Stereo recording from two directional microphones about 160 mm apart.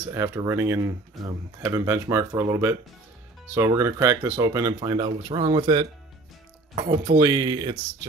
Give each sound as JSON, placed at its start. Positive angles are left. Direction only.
{"t": 0.1, "sound": "speech", "side_deg": -20}
{"t": 7.2, "sound": "speech", "side_deg": -25}